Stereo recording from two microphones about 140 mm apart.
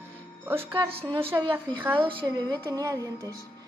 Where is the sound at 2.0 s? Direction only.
35° right (ahead or behind).